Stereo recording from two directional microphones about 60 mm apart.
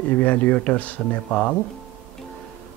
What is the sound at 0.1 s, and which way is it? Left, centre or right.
Speech, left.